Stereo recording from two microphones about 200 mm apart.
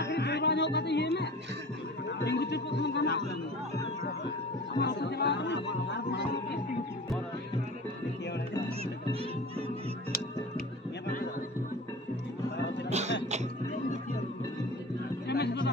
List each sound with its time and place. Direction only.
0.0 s music: 55° left (ahead or behind)
2.0 s a sound: 60° left (ahead or behind)
4.7 s music: 60° left (ahead or behind)
12.9 s music: 35° right (ahead or behind)
15.2 s music: 55° left (ahead or behind)